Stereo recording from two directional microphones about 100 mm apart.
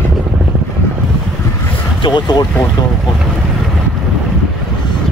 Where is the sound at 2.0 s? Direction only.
45° left (ahead or behind).